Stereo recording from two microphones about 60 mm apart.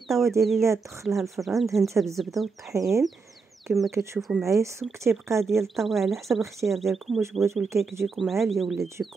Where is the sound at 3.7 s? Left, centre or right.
Right.